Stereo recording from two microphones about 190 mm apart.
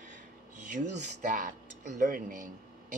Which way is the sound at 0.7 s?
40° right (ahead or behind).